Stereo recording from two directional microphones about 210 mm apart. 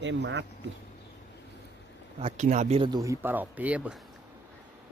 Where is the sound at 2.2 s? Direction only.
35° right (ahead or behind); by 4.0 s 5° right (ahead or behind).